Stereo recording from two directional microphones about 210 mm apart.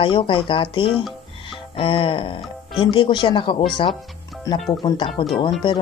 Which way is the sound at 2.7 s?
25° left (ahead or behind).